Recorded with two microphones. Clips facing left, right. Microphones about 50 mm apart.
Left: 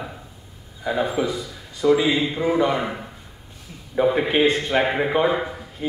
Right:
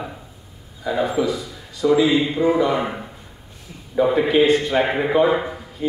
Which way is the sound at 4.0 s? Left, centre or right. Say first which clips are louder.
Right 1 dB; centre.